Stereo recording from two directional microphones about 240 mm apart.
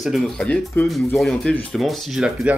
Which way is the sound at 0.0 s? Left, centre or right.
Centre.